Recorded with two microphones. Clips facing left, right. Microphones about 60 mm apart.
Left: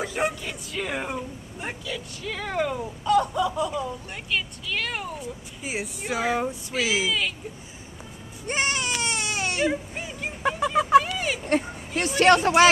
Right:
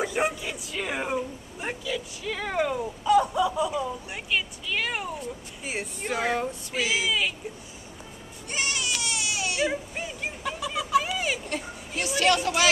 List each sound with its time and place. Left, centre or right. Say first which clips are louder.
0.0 s a man's voice: even; centre
7.1 s speech: even; centre
8.5 s baby cry: left 4 dB; left
9.7 s a sound: left 3 dB; centre
11.4 s speech: left 8 dB; left